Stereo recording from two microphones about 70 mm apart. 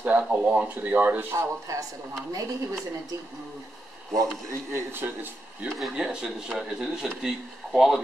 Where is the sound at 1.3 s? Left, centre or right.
Right.